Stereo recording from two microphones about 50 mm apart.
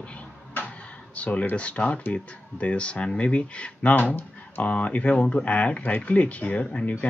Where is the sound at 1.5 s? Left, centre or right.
Left.